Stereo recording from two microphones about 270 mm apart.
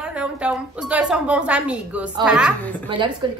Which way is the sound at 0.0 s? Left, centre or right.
Centre.